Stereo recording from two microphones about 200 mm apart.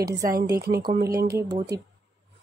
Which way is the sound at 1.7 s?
20° right (ahead or behind).